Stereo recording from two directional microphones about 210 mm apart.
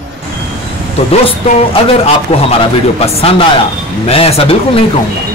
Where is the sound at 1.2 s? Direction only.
25° left (ahead or behind).